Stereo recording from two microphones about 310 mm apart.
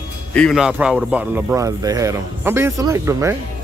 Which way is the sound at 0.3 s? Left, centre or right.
Centre.